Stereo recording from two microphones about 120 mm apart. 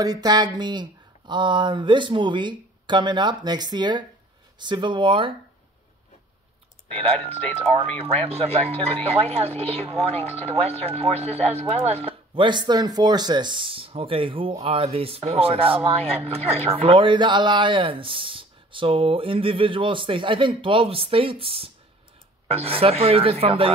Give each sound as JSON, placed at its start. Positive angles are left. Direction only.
{"t": 0.0, "sound": "speech", "side_deg": -35}
{"t": 6.9, "sound": "speech", "side_deg": -55}
{"t": 12.4, "sound": "speech", "side_deg": -40}